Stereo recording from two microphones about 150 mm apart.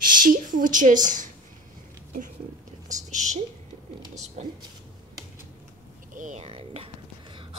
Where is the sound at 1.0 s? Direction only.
60° right (ahead or behind).